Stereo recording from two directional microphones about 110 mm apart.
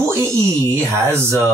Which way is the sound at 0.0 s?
25° right (ahead or behind).